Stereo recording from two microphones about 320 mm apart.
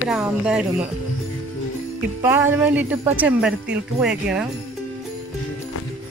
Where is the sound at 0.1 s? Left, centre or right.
Centre.